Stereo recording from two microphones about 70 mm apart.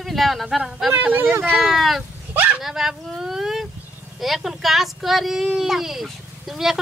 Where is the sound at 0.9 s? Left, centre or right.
Right.